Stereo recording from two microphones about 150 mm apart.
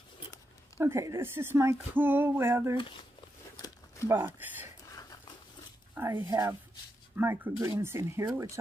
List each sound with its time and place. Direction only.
0.7 s speech: 15° right (ahead or behind)
3.5 s a sound: 25° left (ahead or behind)
4.1 s speech: 15° right (ahead or behind)
5.9 s speech: 15° right (ahead or behind)